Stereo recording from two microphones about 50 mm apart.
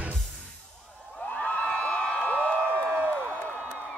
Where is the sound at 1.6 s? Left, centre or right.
Left.